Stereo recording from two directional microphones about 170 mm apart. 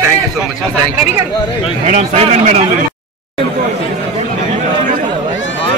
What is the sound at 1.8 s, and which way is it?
Speech, 40° right (ahead or behind).